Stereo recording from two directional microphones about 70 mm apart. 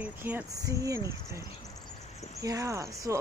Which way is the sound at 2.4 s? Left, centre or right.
Right.